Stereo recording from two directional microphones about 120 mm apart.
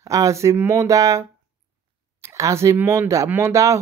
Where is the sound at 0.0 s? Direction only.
25° right (ahead or behind).